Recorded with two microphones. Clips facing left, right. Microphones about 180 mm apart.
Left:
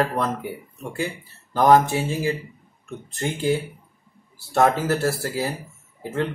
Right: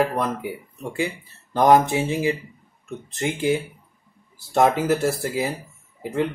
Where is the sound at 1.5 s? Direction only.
15° right (ahead or behind).